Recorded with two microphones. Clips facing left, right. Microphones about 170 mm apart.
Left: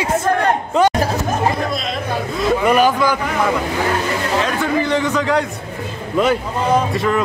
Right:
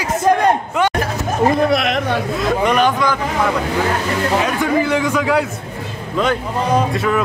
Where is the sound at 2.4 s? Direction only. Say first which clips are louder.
Left 3 dB; 5° left (ahead or behind).